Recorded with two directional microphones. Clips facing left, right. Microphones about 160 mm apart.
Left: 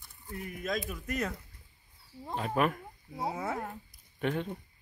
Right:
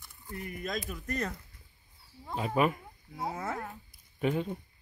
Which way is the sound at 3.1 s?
10° left (ahead or behind).